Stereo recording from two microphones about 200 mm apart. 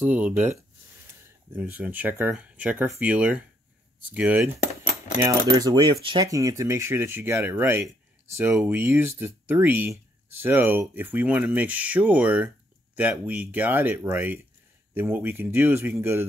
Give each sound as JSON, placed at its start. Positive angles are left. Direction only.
{"t": 0.0, "sound": "speech", "side_deg": -10}
{"t": 5.6, "sound": "speech", "side_deg": -20}